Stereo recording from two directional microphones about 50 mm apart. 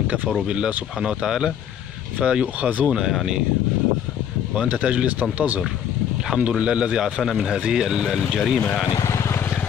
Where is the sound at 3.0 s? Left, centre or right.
Centre.